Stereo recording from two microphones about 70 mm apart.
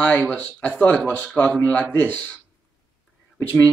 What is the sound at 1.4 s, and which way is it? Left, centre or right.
Speech, left.